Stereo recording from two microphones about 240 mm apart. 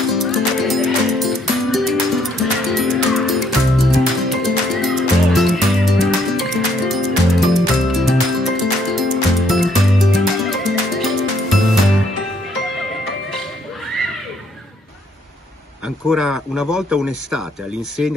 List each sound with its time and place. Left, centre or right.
0.1 s music: centre
16.1 s speech: centre